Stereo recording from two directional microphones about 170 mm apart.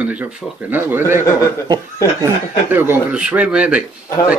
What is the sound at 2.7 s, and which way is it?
Speech, 10° right (ahead or behind).